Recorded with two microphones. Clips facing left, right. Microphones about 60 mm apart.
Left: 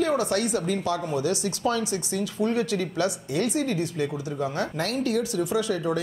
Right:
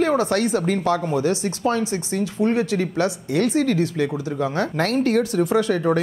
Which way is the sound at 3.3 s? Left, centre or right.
Right.